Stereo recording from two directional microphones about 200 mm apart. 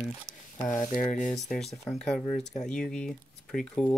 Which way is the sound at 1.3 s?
Centre (ahead or behind).